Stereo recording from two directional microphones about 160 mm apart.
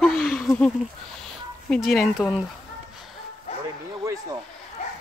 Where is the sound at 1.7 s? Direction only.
Centre (ahead or behind).